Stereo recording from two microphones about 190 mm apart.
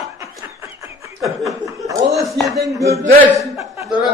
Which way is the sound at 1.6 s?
15° right (ahead or behind).